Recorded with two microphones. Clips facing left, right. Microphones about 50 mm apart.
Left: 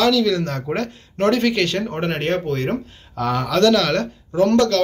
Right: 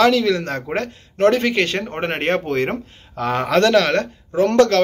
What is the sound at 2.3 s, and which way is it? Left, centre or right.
Speech, right.